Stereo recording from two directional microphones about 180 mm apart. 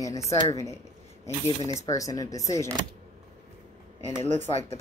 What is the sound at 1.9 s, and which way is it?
Speech, 20° left (ahead or behind).